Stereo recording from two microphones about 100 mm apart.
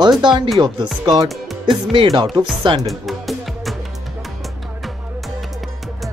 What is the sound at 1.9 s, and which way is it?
Speech, 60° right (ahead or behind).